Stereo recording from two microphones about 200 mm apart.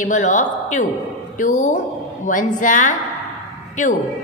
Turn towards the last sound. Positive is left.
turn(degrees=35)  # may be behind; listen again after turning